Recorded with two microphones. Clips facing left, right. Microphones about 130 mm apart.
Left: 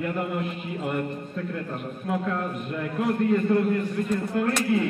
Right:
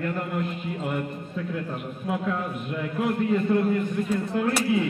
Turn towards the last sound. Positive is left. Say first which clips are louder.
# even
turn(degrees=-5)  # may be behind; listen again after turning